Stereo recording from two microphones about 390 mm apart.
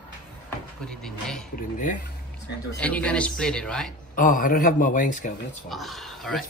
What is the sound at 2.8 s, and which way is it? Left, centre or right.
Speech, centre.